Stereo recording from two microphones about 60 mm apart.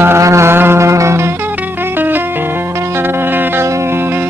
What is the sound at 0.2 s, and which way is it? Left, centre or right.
Music, right.